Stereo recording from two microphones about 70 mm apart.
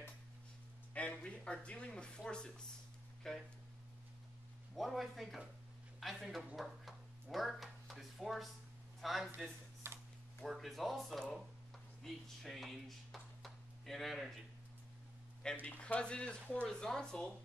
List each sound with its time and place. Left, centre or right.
0.9 s speech: centre
4.7 s speech: centre
9.8 s a sound: right
10.4 s speech: centre
15.6 s speech: centre